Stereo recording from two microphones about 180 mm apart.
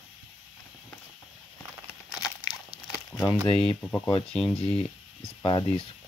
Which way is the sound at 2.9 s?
5° left (ahead or behind).